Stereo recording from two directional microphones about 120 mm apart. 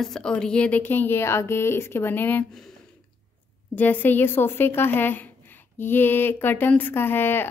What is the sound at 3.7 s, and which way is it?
Speech, 15° left (ahead or behind).